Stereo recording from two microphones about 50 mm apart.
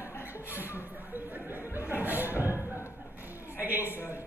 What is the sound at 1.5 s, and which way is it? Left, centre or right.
Music, right.